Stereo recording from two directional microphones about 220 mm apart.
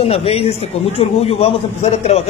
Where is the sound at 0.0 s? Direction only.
25° left (ahead or behind).